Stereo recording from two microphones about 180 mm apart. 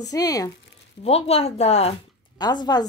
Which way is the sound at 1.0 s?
35° left (ahead or behind).